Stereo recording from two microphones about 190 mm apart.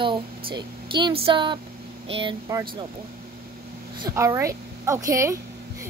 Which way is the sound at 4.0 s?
15° right (ahead or behind).